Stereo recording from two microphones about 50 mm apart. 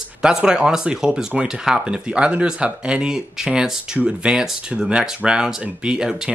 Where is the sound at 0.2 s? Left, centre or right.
Centre.